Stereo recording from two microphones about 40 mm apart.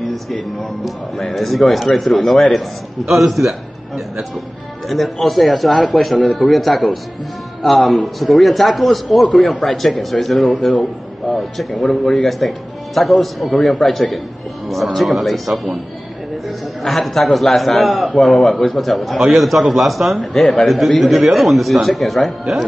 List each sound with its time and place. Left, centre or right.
0.1 s a man's voice: centre